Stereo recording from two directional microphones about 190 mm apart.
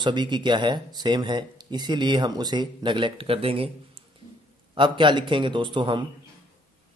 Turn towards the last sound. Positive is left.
turn(degrees=-25)  # may be behind; listen again after turning